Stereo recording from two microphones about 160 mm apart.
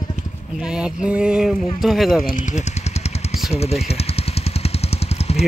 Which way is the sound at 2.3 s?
50° left (ahead or behind).